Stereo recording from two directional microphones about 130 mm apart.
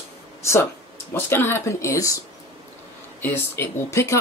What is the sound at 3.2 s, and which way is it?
Speech, 15° left (ahead or behind).